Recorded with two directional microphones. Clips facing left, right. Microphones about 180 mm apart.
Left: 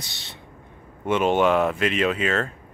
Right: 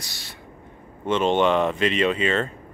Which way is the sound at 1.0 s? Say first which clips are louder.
Even; 10° left (ahead or behind).